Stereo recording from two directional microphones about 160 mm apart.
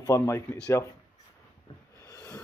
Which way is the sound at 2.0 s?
20° left (ahead or behind).